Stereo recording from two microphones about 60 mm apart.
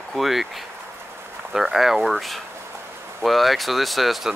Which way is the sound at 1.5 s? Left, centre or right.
Centre.